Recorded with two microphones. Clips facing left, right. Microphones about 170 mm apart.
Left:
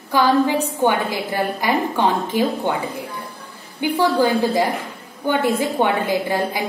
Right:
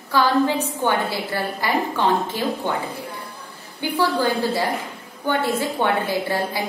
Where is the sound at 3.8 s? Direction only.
15° left (ahead or behind).